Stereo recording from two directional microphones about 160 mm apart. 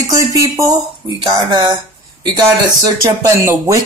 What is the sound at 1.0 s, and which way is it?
Speech, 30° right (ahead or behind).